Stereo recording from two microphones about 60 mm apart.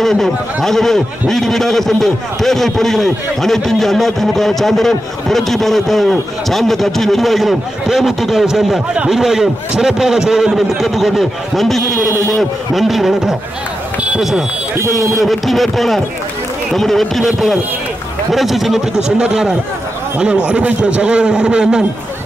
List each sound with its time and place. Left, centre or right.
0.0 s a man's voice: centre
14.9 s a man's voice: centre
18.9 s a man's voice: centre